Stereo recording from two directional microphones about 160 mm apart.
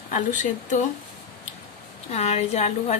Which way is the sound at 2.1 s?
40° left (ahead or behind).